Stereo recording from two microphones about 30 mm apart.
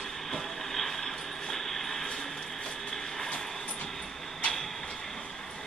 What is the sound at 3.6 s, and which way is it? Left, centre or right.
Vehicle, left.